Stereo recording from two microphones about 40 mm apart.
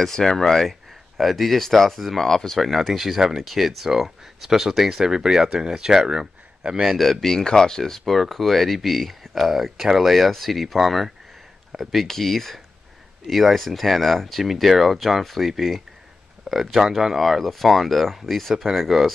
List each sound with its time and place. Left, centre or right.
0.0 s speech: centre
1.1 s speech: centre
2.6 s speech: centre
6.8 s speech: centre